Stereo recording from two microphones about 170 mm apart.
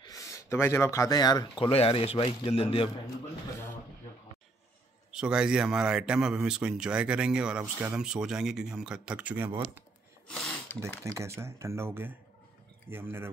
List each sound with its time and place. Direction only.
0.0 s speech: 20° left (ahead or behind); by 2.9 s 35° left (ahead or behind)
5.1 s speech: 5° right (ahead or behind)
10.3 s a sound: 10° left (ahead or behind)
10.8 s speech: 15° right (ahead or behind)